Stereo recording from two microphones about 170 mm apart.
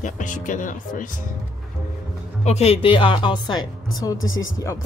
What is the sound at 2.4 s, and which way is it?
Speech, 40° left (ahead or behind).